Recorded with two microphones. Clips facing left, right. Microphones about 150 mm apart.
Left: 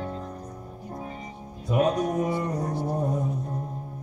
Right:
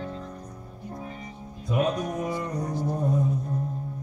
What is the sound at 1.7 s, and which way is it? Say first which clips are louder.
Music: left 3 dB; 40° left (ahead or behind).